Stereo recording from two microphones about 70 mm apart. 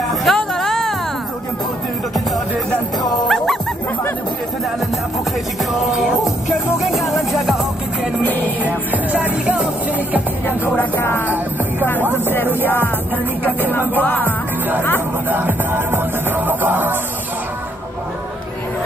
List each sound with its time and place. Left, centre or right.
0.1 s a sound: centre
3.3 s dog: centre
5.6 s music: centre
8.2 s music: left
8.5 s music: right
10.8 s music: left
11.8 s chopping: left
12.6 s music: left
15.2 s music: right